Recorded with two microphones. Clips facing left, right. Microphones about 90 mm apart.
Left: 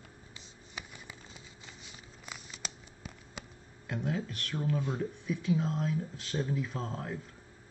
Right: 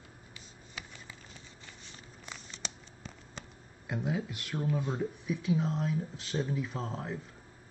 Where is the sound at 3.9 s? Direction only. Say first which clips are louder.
Right 1 dB; 15° right (ahead or behind).